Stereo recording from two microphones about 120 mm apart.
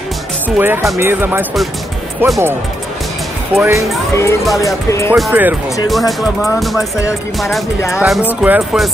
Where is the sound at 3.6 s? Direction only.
25° right (ahead or behind).